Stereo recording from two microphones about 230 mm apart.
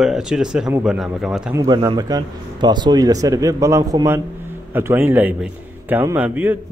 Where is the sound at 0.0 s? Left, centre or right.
Centre.